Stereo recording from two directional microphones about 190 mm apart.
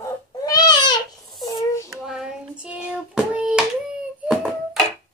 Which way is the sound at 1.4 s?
15° left (ahead or behind).